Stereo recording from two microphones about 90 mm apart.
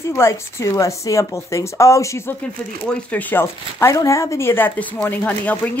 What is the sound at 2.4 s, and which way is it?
Speech, 15° left (ahead or behind).